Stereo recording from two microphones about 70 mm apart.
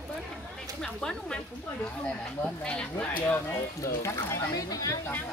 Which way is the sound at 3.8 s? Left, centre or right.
Left.